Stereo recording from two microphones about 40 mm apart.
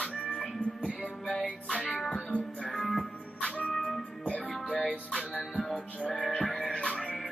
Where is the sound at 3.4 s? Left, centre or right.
Left.